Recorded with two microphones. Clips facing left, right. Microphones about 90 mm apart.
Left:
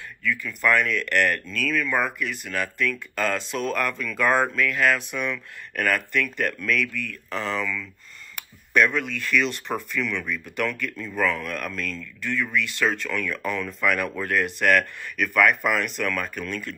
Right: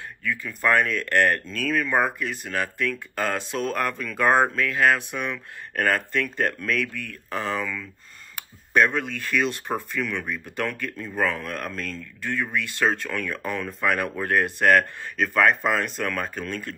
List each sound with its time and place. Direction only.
0.2 s speech: 25° right (ahead or behind)
0.7 s speech: 35° right (ahead or behind)
7.1 s speech: 50° right (ahead or behind)
8.7 s speech: 25° right (ahead or behind)
10.0 s speech: 50° right (ahead or behind)
12.4 s speech: 30° right (ahead or behind)